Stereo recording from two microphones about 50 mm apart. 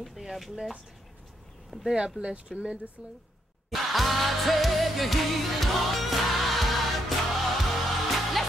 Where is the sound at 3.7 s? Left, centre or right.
Centre.